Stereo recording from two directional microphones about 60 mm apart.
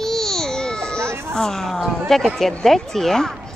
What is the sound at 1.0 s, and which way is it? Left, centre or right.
Baby cry, right.